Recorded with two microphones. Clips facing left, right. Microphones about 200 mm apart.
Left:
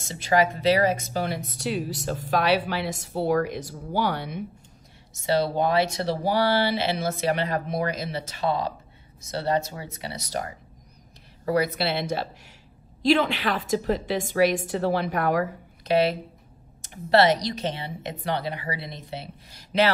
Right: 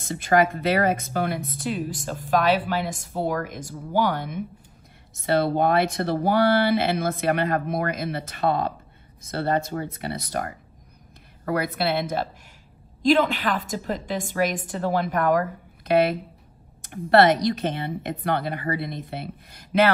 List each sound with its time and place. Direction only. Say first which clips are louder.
0.0 s speech: right 2 dB; 55° right (ahead or behind)